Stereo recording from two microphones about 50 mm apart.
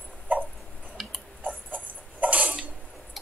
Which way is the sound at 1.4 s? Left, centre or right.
Right.